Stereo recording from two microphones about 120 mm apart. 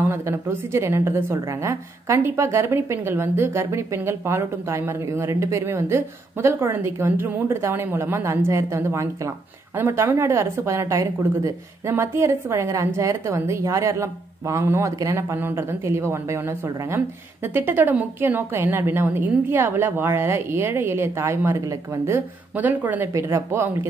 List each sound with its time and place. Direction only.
0.0 s a woman's voice: 20° right (ahead or behind)